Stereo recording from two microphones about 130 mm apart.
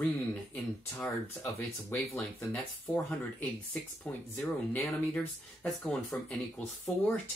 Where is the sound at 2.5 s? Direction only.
10° left (ahead or behind).